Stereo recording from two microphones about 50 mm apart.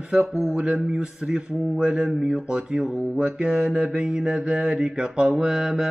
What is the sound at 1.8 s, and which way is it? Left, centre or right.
Mantra, right.